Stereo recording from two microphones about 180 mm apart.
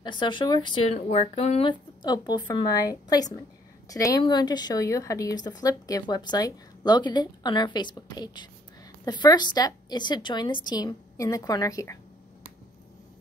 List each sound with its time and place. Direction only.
0.0 s a woman's voice: 25° left (ahead or behind)
0.9 s a woman's voice: 40° left (ahead or behind); by 12.0 s 20° left (ahead or behind)